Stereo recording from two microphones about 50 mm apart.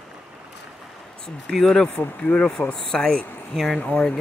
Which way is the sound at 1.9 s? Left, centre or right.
Left.